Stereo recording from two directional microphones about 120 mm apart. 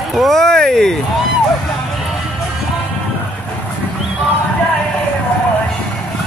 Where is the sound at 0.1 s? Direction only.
Centre (ahead or behind).